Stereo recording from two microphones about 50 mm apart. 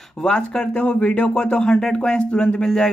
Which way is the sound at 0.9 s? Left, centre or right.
Left.